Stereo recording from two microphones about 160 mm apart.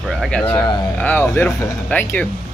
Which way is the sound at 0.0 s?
Centre (ahead or behind).